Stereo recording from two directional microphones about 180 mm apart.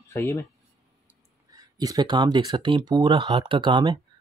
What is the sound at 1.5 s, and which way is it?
Speech, 20° right (ahead or behind).